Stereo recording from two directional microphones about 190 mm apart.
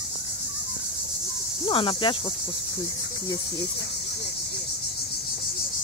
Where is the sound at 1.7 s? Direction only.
25° left (ahead or behind).